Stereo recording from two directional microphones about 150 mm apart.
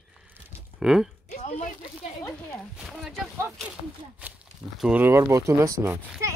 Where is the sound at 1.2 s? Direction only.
50° left (ahead or behind).